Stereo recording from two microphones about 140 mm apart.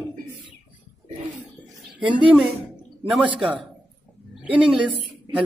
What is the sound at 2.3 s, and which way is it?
A woman's voice, 5° right (ahead or behind).